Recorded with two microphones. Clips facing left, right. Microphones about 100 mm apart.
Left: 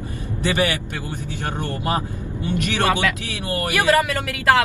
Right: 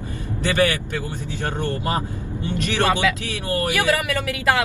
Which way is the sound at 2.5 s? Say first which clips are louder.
Even; 15° left (ahead or behind).